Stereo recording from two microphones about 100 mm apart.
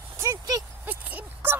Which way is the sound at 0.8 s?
15° right (ahead or behind).